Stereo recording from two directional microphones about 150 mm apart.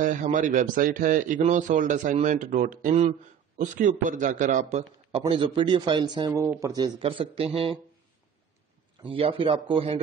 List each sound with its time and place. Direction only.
0.0 s speech: 60° right (ahead or behind)
5.3 s speech: 35° right (ahead or behind)
7.0 s speech: 40° right (ahead or behind)
9.0 s speech: 35° right (ahead or behind)